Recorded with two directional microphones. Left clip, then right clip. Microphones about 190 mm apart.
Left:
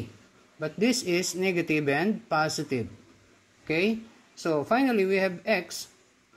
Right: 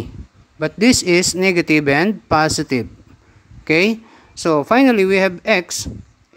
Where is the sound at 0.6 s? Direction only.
30° right (ahead or behind).